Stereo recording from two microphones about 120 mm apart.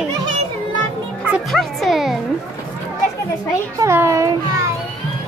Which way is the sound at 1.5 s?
Centre (ahead or behind).